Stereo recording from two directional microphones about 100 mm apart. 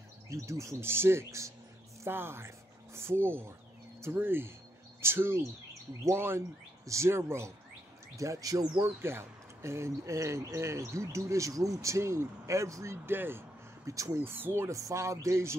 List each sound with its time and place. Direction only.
0.3 s speech: 30° right (ahead or behind)
8.8 s speech: 25° right (ahead or behind)
13.8 s speech: 35° right (ahead or behind)